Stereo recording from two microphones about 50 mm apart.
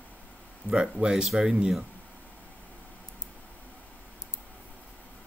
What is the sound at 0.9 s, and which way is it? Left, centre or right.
Speech, centre.